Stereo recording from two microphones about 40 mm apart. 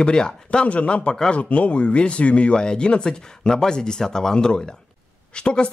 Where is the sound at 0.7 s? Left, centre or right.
Left.